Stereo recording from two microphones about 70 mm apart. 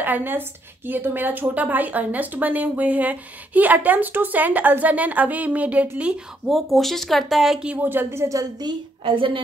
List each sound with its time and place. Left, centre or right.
0.0 s a woman's voice: right
6.5 s speech: centre
7.8 s a woman's voice: right